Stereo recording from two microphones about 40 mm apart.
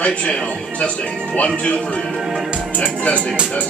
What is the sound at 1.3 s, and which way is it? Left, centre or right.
Speech, left.